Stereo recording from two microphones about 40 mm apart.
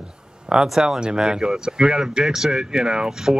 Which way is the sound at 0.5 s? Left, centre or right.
Centre.